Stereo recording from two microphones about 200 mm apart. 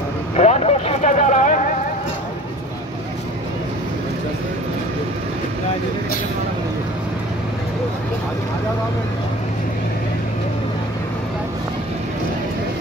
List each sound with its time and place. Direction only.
0.4 s vehicle: 30° left (ahead or behind)